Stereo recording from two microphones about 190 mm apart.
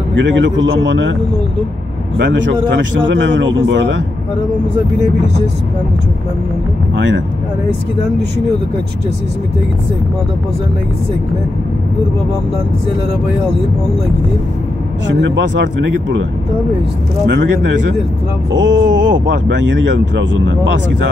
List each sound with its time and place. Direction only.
0.1 s speech: 70° right (ahead or behind)
2.1 s speech: 70° right (ahead or behind)
15.0 s speech: 70° right (ahead or behind)
17.3 s speech: 65° right (ahead or behind)